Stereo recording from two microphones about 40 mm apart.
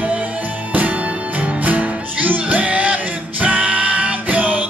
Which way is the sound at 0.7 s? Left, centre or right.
Right.